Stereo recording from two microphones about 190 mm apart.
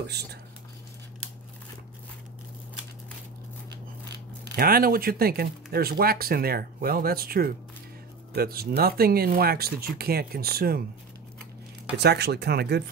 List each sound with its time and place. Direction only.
0.0 s speech: 60° right (ahead or behind)
4.5 s speech: 50° right (ahead or behind)
12.0 s speech: 60° right (ahead or behind)